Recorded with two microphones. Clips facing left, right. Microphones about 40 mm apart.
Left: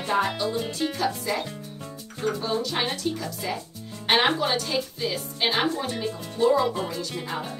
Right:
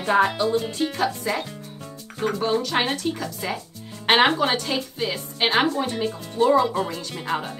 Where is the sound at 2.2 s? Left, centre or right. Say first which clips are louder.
Right 4 dB; right.